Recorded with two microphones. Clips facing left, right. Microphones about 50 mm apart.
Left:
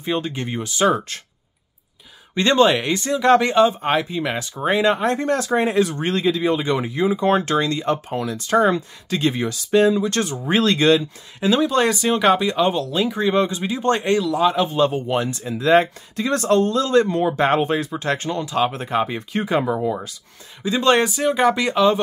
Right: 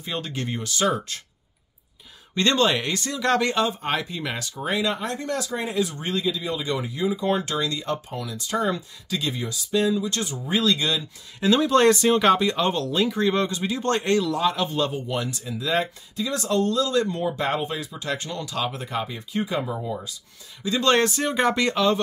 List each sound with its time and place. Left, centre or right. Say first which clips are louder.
0.0 s speech: left 6 dB; left
0.9 s speech: left 4 dB; left
2.3 s speech: left 5 dB; centre
4.6 s speech: left 7 dB; left
11.3 s speech: left 1 dB; centre
14.9 s speech: left 6 dB; left
20.6 s speech: left 3 dB; centre